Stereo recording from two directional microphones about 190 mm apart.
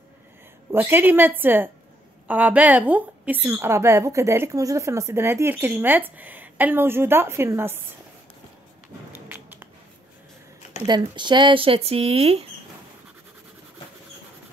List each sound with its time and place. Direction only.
0.7 s a woman's voice: 10° right (ahead or behind)
9.3 s a sound: 10° right (ahead or behind)
10.9 s speech: 25° right (ahead or behind)